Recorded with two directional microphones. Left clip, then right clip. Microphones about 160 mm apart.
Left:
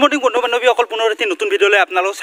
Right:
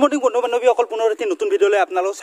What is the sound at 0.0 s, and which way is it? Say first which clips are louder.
Speech: left 3 dB; centre (ahead or behind).